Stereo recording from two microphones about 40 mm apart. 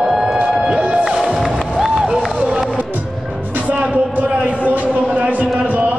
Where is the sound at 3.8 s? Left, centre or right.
Right.